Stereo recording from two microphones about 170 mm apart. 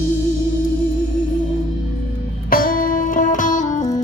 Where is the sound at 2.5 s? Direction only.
55° left (ahead or behind).